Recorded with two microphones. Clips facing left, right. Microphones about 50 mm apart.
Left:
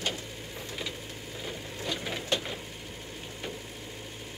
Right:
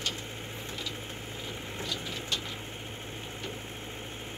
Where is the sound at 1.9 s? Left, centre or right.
Left.